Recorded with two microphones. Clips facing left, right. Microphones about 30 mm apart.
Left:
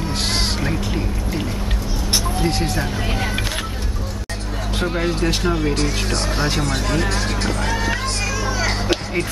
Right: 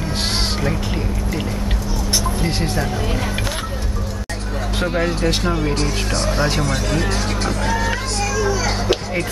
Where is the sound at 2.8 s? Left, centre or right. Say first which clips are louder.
Right 1 dB; centre.